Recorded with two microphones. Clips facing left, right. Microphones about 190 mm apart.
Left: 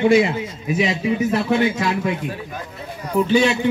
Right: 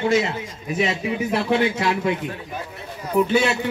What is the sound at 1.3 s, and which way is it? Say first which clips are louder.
Speech: even; 15° right (ahead or behind).